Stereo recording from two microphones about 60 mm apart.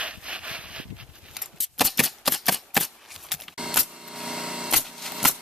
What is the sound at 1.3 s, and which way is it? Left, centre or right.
Shuffling cards, centre.